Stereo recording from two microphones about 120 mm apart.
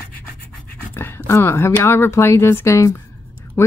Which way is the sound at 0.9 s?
20° left (ahead or behind).